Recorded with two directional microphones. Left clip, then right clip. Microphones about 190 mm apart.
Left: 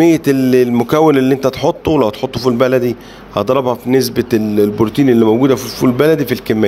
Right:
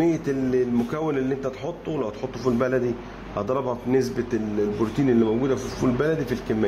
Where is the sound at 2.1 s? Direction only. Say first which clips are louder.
Left 11 dB; 25° left (ahead or behind).